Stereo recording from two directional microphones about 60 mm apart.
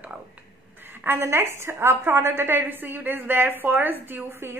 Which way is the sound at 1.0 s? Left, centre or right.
Right.